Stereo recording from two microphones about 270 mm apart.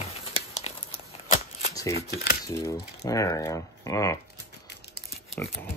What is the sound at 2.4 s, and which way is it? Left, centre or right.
Speech, centre.